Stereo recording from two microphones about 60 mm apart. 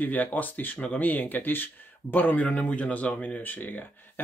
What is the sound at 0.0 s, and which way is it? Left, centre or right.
Speech, left.